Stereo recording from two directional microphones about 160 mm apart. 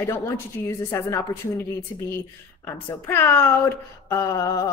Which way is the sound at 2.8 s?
15° left (ahead or behind).